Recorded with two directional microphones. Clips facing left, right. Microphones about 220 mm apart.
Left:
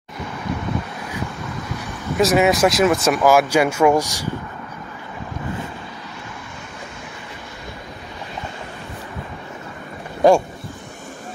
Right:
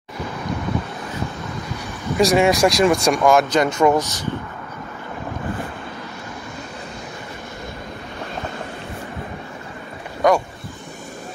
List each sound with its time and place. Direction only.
2.1 s speech: 5° left (ahead or behind)
10.2 s speech: 30° left (ahead or behind)